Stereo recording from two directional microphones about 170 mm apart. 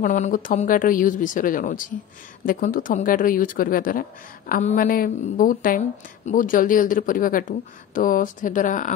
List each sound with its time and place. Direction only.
0.0 s a woman's voice: 50° left (ahead or behind)